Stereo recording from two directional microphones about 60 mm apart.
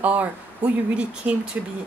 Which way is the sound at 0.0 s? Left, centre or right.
Right.